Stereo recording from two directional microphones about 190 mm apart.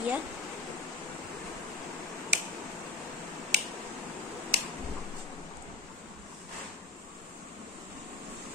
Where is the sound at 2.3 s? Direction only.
65° right (ahead or behind).